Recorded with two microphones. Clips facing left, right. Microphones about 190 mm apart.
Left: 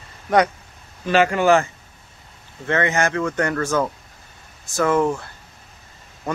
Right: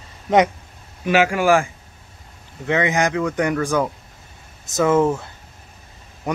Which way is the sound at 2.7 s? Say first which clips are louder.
Right 1 dB; 15° right (ahead or behind).